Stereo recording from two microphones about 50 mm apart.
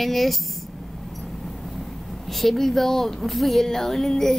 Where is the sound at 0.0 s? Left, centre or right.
Centre.